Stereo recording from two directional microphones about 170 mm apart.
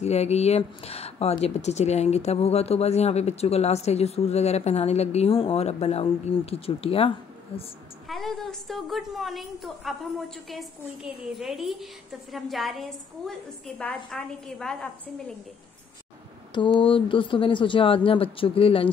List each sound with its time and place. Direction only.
0.0 s speech: 40° left (ahead or behind)
8.1 s a woman's voice: centre (ahead or behind)
16.5 s speech: 30° left (ahead or behind)